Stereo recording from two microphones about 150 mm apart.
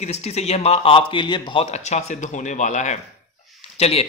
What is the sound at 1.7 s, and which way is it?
Speech, 50° left (ahead or behind).